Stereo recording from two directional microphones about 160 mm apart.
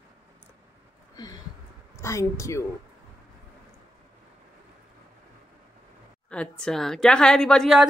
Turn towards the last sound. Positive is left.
turn(degrees=0)  # may be behind; listen again after turning